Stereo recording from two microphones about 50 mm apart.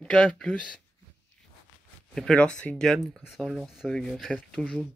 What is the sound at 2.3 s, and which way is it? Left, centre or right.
Speech, left.